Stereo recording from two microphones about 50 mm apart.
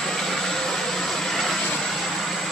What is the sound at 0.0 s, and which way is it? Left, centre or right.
Vehicle, centre.